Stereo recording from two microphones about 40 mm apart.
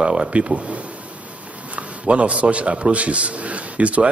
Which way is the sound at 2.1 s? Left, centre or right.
Right.